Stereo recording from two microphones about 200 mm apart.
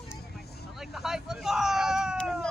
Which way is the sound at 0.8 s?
Centre (ahead or behind).